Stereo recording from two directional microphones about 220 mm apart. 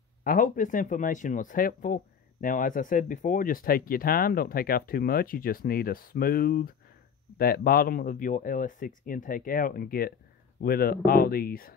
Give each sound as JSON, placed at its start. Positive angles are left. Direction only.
{"t": 0.2, "sound": "speech", "side_deg": 40}